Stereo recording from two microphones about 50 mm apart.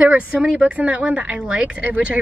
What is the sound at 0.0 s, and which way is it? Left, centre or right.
Speech, right.